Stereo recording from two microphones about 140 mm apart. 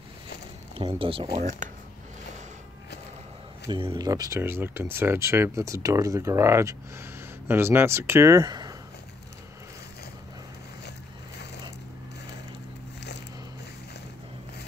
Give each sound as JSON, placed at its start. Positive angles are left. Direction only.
{"t": 0.7, "sound": "speech", "side_deg": -40}
{"t": 1.6, "sound": "a sound", "side_deg": -60}
{"t": 3.6, "sound": "speech", "side_deg": -35}
{"t": 4.1, "sound": "speech", "side_deg": -25}